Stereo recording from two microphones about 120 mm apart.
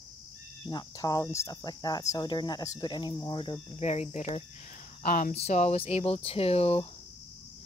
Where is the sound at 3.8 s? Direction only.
70° left (ahead or behind).